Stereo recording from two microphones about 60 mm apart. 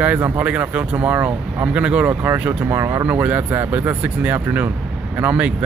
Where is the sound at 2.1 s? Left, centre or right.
Right.